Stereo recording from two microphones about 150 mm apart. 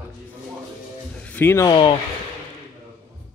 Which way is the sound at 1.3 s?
15° left (ahead or behind).